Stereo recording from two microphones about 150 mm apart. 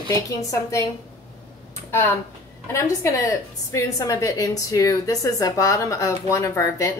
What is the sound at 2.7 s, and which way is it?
A woman's voice, 20° left (ahead or behind).